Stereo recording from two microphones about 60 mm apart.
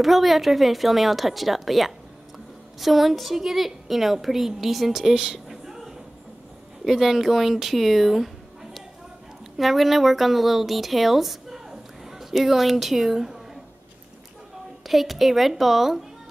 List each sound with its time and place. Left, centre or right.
0.0 s a woman's voice: centre
9.6 s a woman's voice: centre
14.9 s a woman's voice: centre